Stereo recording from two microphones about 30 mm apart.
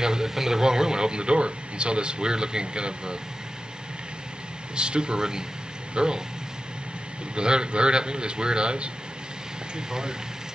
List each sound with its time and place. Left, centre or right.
0.0 s a man's voice: right
4.7 s a man's voice: right
7.3 s a man's voice: right